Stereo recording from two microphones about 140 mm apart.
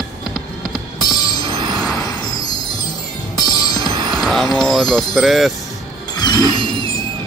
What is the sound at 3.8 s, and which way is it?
Music, 30° right (ahead or behind).